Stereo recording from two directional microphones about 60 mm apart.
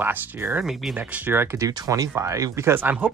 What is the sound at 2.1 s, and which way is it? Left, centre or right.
Speech, right.